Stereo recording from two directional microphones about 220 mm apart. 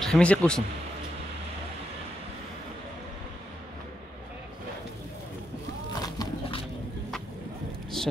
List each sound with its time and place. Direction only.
0.0 s speech: 5° left (ahead or behind)
5.9 s horse: 15° left (ahead or behind)
8.0 s a sound: centre (ahead or behind)